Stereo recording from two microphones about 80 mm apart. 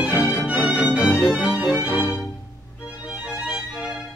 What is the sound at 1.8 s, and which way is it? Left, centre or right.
Music, centre.